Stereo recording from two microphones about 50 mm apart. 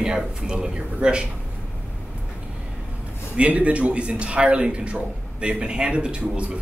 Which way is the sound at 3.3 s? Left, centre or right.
Right.